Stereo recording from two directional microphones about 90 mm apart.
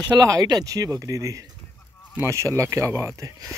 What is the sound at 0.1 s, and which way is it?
Speech, 45° right (ahead or behind).